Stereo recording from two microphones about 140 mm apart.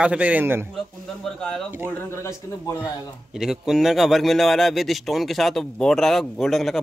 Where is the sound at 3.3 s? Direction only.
5° right (ahead or behind).